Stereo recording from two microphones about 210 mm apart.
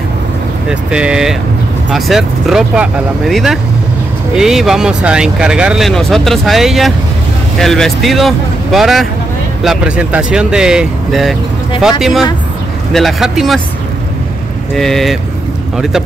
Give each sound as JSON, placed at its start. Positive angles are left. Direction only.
{"t": 0.7, "sound": "speech", "side_deg": -5}
{"t": 14.8, "sound": "speech", "side_deg": 0}